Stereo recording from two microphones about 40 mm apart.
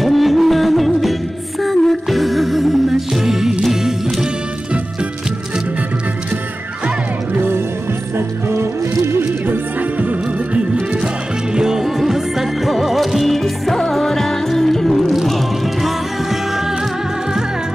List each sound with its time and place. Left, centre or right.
0.0 s music: centre
8.5 s music: right
11.5 s music: centre